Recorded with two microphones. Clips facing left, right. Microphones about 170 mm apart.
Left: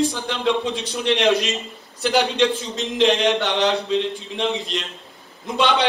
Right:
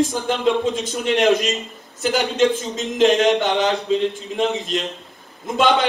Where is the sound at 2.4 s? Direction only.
45° right (ahead or behind).